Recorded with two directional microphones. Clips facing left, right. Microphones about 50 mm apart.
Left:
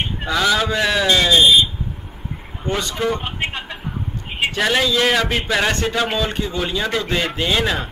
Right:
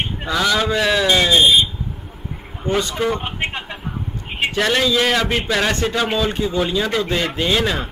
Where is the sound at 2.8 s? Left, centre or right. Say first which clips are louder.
Right 1 dB; centre.